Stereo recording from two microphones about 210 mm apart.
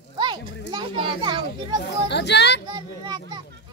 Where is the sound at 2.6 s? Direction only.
20° right (ahead or behind).